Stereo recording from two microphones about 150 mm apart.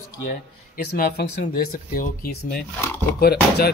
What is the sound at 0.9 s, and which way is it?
Speech, 85° left.